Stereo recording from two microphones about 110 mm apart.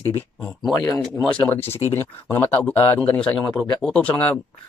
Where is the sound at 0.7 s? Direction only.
30° left (ahead or behind).